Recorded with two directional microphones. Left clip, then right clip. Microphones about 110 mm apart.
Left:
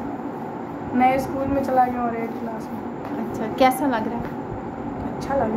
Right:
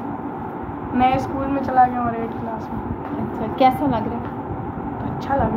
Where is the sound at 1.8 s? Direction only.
15° left (ahead or behind).